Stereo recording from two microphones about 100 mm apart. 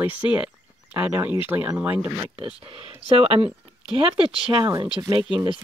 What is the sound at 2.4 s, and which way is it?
Speech, 65° right (ahead or behind).